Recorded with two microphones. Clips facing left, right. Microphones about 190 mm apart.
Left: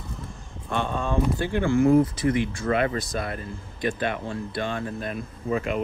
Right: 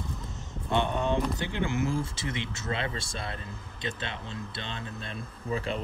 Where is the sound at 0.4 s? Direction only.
20° right (ahead or behind).